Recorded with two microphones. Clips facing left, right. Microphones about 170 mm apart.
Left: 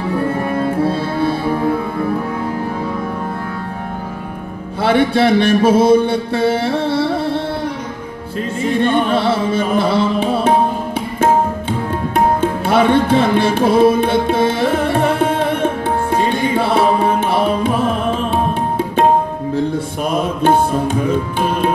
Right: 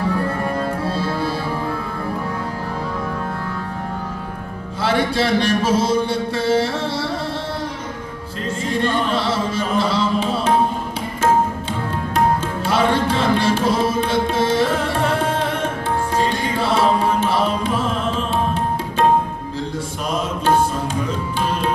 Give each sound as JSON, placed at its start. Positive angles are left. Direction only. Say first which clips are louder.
{"t": 0.5, "sound": "music", "louder": "left 6 dB", "side_deg": 55}
{"t": 4.8, "sound": "a man's voice", "louder": "left 6 dB", "side_deg": 60}
{"t": 8.6, "sound": "music", "louder": "left 6 dB", "side_deg": 55}
{"t": 12.4, "sound": "music", "louder": "left 5 dB", "side_deg": 60}
{"t": 20.1, "sound": "tabla", "louder": "left 4 dB", "side_deg": 55}